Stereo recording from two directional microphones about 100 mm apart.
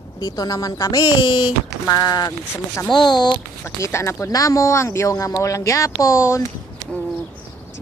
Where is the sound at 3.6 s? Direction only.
25° left (ahead or behind).